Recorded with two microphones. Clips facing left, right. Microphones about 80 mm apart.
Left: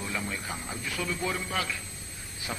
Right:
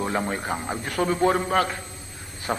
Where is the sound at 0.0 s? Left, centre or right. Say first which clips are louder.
Right 9 dB; right.